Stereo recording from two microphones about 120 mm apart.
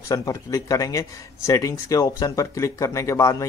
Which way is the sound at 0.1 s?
30° left (ahead or behind).